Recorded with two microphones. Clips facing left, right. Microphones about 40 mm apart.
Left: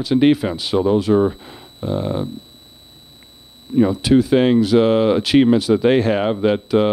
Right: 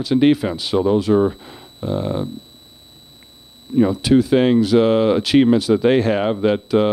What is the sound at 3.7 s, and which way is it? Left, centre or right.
Speech, centre.